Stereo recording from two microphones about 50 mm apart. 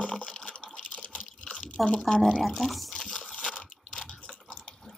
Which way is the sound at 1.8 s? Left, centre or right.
Centre.